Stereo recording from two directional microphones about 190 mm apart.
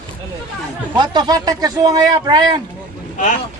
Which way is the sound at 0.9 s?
25° right (ahead or behind).